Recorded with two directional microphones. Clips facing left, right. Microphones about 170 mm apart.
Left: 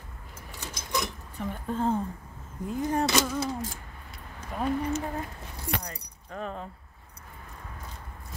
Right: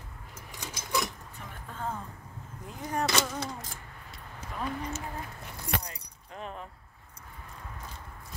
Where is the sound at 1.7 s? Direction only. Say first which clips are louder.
Left 9 dB; 30° left (ahead or behind).